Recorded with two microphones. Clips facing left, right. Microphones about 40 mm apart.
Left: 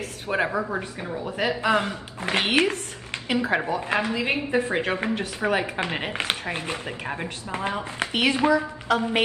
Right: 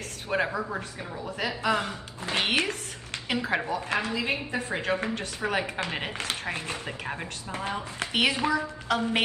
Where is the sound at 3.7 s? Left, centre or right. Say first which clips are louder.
Left 4 dB; left.